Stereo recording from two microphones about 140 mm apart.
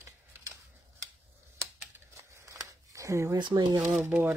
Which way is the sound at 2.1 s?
20° right (ahead or behind).